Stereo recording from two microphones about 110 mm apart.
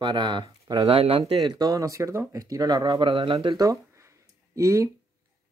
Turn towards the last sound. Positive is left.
turn(degrees=-25)  # may be behind; listen again after turning